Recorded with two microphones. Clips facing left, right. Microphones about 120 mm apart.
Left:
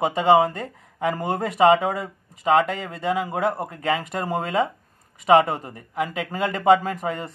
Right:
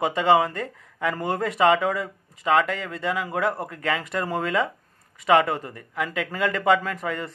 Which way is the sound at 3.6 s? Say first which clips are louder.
Left 3 dB; 30° left (ahead or behind).